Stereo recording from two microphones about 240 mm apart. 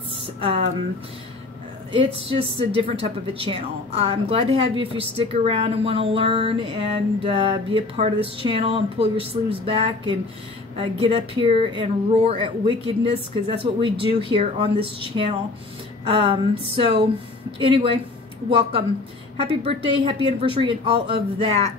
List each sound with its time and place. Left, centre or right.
0.4 s speech: right
1.9 s speech: right
16.1 s speech: right